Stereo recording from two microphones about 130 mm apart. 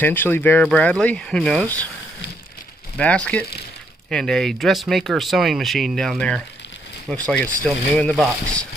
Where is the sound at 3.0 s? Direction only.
10° left (ahead or behind).